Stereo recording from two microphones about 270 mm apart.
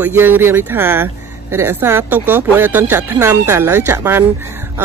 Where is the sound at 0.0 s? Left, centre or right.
Centre.